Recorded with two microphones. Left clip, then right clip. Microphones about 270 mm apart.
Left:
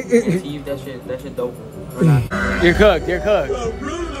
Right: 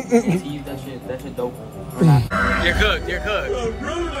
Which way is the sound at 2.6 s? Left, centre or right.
Left.